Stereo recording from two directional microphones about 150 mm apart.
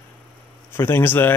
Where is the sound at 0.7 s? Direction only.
15° left (ahead or behind).